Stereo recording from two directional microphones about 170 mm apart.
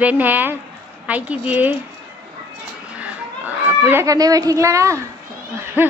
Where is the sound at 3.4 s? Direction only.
15° right (ahead or behind).